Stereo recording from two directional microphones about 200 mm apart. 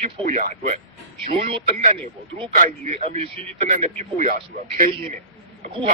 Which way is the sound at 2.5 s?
40° right (ahead or behind).